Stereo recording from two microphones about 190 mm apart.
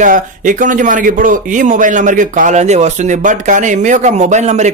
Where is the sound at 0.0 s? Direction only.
45° right (ahead or behind).